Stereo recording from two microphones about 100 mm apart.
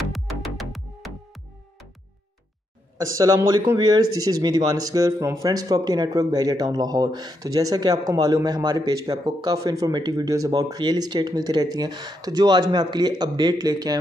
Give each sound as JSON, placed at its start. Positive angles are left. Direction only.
{"t": 0.1, "sound": "music", "side_deg": 0}
{"t": 3.0, "sound": "speech", "side_deg": -35}